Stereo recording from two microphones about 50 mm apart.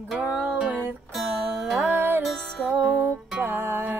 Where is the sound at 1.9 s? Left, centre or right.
Right.